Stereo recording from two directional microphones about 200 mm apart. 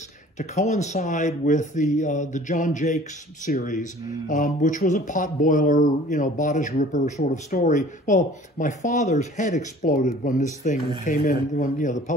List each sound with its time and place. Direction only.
0.4 s speech: 35° left (ahead or behind)